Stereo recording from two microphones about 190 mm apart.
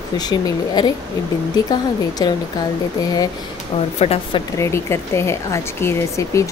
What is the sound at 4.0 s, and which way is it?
Speech, 30° left (ahead or behind).